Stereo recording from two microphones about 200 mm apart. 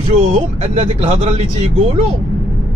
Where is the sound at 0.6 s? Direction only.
35° right (ahead or behind).